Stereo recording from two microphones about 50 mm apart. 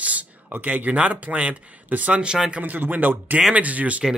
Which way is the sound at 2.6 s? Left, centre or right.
Right.